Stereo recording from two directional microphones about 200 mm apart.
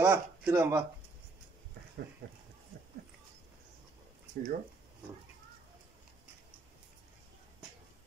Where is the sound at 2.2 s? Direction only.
60° right (ahead or behind).